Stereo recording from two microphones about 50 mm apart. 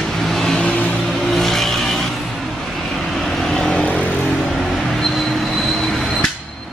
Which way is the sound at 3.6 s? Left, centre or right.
Left.